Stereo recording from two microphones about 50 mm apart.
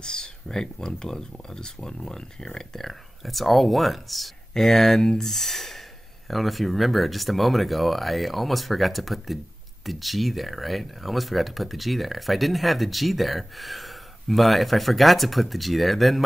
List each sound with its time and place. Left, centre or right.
0.0 s speech: centre